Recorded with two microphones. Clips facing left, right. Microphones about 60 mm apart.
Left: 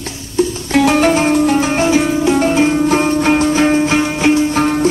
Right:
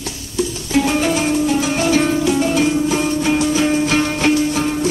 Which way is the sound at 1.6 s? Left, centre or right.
Left.